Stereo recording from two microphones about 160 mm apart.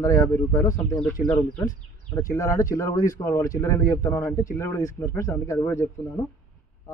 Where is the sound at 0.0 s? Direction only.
20° left (ahead or behind).